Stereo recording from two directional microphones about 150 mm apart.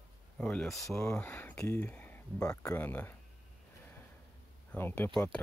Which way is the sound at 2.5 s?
20° left (ahead or behind).